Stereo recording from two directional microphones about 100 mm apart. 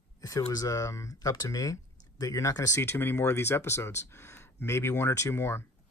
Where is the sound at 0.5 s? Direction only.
35° left (ahead or behind).